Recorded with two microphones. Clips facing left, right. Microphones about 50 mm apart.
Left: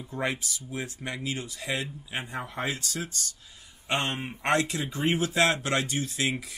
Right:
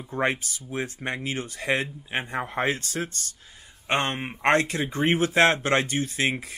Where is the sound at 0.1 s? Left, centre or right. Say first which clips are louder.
Right 5 dB; right.